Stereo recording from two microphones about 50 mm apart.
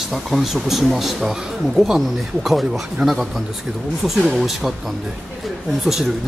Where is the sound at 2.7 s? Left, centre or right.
Centre.